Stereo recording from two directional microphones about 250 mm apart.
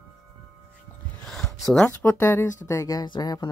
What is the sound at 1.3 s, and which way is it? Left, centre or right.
Speech, centre.